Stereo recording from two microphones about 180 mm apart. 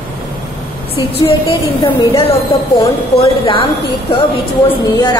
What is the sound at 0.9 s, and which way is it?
A woman's voice, 30° left (ahead or behind).